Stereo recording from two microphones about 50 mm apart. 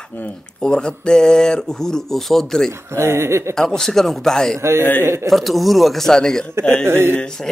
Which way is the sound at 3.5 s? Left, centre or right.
Centre.